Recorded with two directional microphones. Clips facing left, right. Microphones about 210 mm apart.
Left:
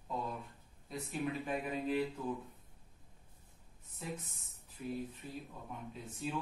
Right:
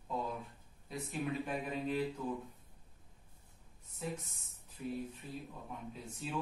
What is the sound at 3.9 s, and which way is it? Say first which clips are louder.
Speech: right 2 dB; centre (ahead or behind).